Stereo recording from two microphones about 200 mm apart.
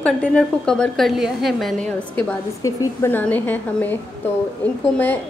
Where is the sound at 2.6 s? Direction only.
15° left (ahead or behind).